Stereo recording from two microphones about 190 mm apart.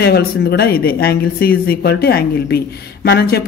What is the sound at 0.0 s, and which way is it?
Speech, 55° left (ahead or behind).